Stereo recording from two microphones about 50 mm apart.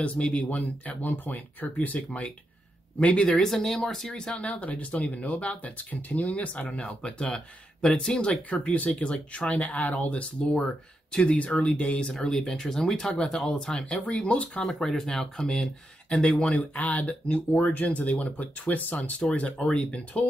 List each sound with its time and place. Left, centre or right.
0.0 s speech: left
3.0 s speech: left
4.5 s speech: left
11.1 s speech: centre
11.3 s speech: left
12.1 s speech: centre
14.6 s speech: centre
16.3 s speech: left